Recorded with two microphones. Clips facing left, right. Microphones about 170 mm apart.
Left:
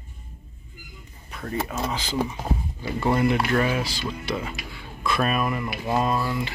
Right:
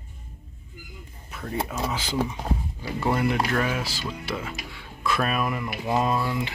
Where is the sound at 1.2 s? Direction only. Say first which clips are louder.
Left 1 dB; 5° right (ahead or behind).